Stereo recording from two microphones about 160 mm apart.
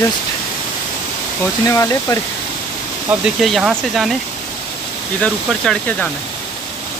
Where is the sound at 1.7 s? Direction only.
20° left (ahead or behind).